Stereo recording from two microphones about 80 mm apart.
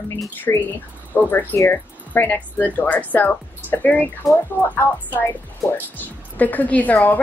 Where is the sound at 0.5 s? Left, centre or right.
Left.